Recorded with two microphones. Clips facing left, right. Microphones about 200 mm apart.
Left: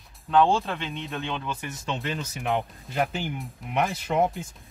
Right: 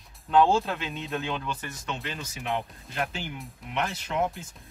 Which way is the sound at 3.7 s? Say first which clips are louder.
Left 5 dB; 50° left (ahead or behind).